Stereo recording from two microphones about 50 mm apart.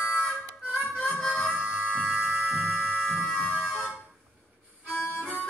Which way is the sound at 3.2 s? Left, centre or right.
Centre.